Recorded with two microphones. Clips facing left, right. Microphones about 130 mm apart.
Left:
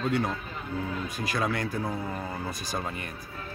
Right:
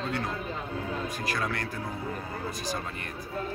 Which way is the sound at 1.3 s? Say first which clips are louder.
Left 4 dB; 15° left (ahead or behind).